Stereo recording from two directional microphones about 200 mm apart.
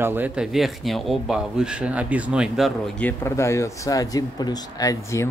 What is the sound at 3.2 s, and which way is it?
Speech, 15° left (ahead or behind).